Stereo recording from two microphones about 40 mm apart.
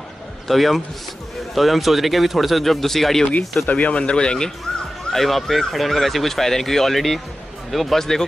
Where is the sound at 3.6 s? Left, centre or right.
Left.